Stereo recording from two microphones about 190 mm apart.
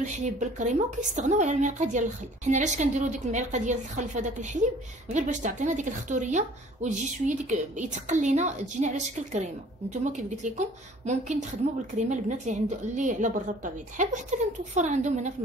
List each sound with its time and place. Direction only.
0.0 s a woman's voice: 40° right (ahead or behind)